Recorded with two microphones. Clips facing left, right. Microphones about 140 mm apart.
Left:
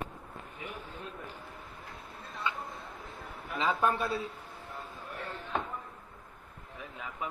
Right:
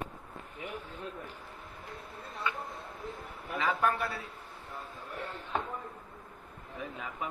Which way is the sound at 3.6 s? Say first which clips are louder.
Left 1 dB; 20° left (ahead or behind).